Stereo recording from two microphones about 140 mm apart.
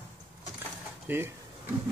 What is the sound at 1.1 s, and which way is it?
Speech, 15° right (ahead or behind).